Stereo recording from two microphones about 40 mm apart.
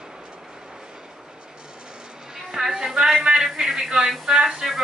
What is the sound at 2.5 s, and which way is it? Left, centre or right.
A woman's voice, centre.